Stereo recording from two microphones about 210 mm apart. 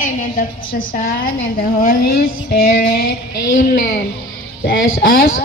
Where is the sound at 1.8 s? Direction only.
45° left (ahead or behind).